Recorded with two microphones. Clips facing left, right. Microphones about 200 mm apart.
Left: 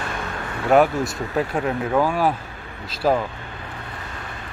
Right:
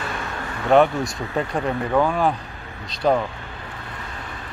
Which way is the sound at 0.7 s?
5° left (ahead or behind).